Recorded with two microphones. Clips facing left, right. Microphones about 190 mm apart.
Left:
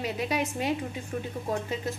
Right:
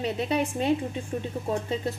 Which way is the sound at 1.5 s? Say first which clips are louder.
Right 3 dB; 35° right (ahead or behind).